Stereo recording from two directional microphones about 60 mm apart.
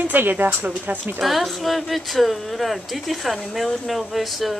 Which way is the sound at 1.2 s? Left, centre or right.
Centre.